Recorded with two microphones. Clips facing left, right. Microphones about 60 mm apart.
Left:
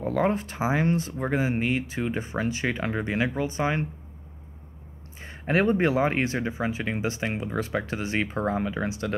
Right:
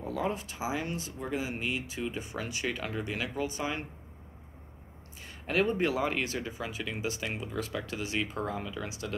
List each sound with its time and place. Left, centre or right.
0.0 s speech: left
5.2 s speech: left